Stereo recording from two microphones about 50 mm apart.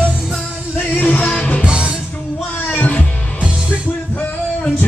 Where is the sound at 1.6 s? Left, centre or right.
Centre.